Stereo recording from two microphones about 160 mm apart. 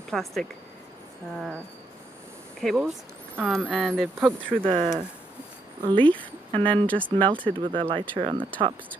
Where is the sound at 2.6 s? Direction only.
Centre (ahead or behind).